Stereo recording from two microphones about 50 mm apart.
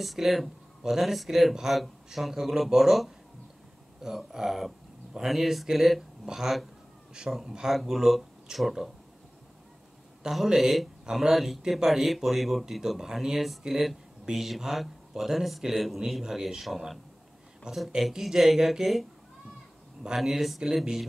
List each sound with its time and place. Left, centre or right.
0.0 s speech: centre
10.2 s speech: centre
20.2 s speech: centre